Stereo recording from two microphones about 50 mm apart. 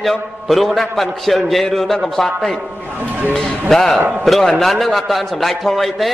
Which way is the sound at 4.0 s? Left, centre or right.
Right.